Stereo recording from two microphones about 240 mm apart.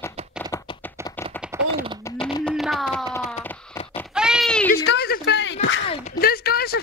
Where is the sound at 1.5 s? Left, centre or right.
Centre.